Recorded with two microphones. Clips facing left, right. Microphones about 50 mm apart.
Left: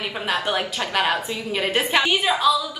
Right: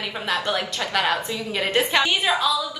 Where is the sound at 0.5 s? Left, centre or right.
Left.